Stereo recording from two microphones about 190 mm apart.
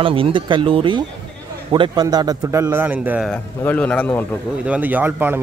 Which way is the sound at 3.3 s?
10° left (ahead or behind).